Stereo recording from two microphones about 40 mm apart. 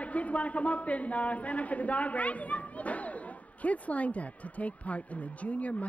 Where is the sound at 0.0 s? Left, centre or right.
Left.